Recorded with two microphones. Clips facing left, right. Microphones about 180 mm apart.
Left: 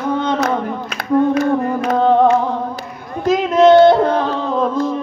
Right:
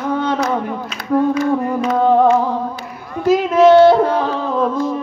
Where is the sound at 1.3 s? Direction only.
60° left (ahead or behind).